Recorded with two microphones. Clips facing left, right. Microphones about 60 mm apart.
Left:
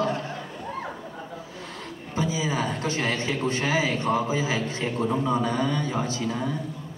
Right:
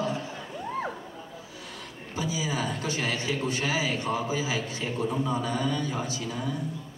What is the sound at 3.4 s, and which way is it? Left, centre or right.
A man's voice, left.